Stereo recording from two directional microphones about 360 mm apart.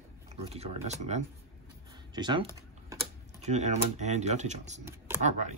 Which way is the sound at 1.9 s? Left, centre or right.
Centre.